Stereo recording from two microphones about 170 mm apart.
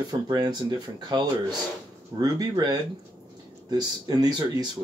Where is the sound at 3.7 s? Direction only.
25° right (ahead or behind).